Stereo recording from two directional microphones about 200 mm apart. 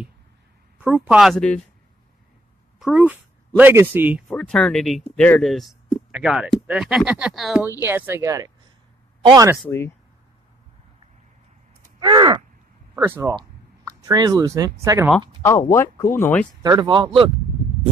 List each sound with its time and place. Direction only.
0.7 s speech: 5° right (ahead or behind)
2.8 s speech: 5° right (ahead or behind)
4.3 s speech: 5° left (ahead or behind); by 9.6 s 20° right (ahead or behind)
12.0 s speech: 25° right (ahead or behind)
12.9 s speech: 10° right (ahead or behind)
15.4 s speech: 15° left (ahead or behind)
16.6 s speech: 20° right (ahead or behind)